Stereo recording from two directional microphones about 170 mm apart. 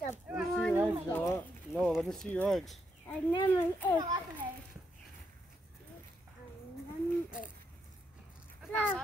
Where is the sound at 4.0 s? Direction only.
25° right (ahead or behind).